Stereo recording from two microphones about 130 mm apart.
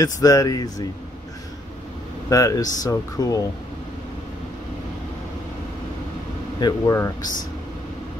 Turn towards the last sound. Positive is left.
turn(degrees=25)  # may be behind; listen again after turning